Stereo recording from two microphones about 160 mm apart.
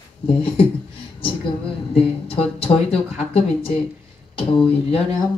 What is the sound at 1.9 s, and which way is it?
Speech, 35° left (ahead or behind).